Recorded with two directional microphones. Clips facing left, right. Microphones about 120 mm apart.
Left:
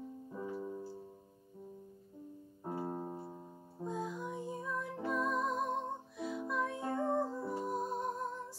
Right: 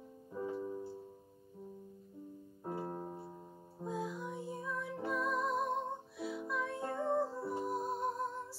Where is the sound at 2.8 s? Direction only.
15° left (ahead or behind).